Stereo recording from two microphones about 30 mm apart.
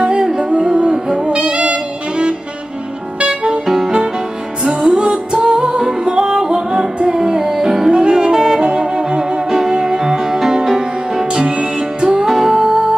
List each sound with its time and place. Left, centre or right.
0.4 s music: right
0.9 s hoot: centre
1.2 s saxophone: right
3.2 s music: right
3.6 s music: centre
4.6 s music: right
11.5 s music: right
12.3 s music: centre